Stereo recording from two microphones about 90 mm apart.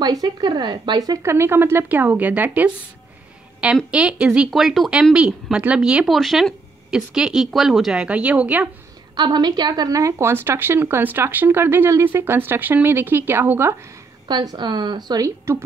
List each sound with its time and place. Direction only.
0.0 s speech: 50° right (ahead or behind)
1.2 s speech: 30° right (ahead or behind)
3.9 s speech: 10° right (ahead or behind)
6.0 s speech: centre (ahead or behind); by 8.6 s 15° right (ahead or behind)
9.1 s speech: 55° right (ahead or behind); by 13.7 s 30° right (ahead or behind)
14.2 s speech: 50° right (ahead or behind)